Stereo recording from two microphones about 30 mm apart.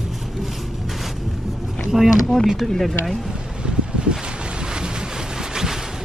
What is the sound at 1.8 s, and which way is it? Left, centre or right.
Speech, centre.